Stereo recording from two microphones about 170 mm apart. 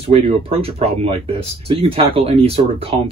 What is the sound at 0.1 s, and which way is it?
Speech, 35° right (ahead or behind).